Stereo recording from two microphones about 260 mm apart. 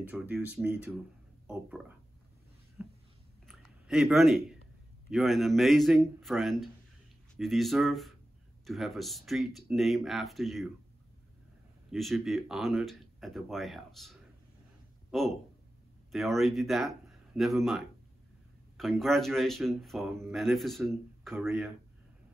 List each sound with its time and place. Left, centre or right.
0.0 s speech: centre
2.8 s a sound: centre
5.1 s speech: centre
11.9 s speech: centre